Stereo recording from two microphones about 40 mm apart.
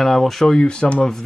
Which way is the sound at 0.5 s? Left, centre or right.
Left.